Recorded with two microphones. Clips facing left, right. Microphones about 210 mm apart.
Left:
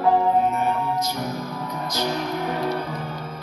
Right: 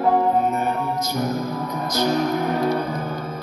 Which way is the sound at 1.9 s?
45° right (ahead or behind).